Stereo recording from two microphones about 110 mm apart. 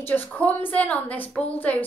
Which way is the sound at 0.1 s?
15° left (ahead or behind).